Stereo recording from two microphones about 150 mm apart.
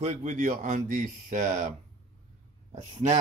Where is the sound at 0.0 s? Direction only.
50° right (ahead or behind).